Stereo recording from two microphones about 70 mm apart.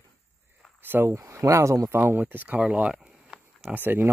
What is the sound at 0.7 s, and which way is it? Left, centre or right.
Speech, right.